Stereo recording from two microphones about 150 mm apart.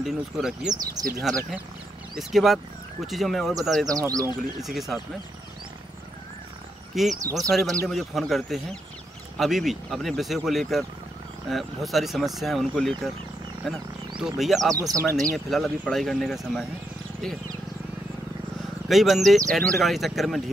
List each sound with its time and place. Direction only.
0.0 s speech: 5° right (ahead or behind)
1.0 s speech: 25° right (ahead or behind)
2.1 s speech: centre (ahead or behind)
3.9 s speech: 25° right (ahead or behind)
4.6 s speech: centre (ahead or behind)
7.2 s speech: 20° right (ahead or behind)
7.5 s speech: centre (ahead or behind)
14.7 s speech: 20° right (ahead or behind)
15.3 s speech: centre (ahead or behind)
18.9 s speech: centre (ahead or behind)